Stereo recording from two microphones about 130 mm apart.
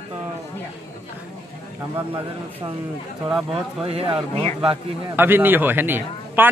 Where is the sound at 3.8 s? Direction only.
45° right (ahead or behind).